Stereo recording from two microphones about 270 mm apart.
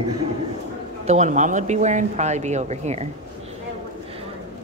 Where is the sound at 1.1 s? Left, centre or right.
Right.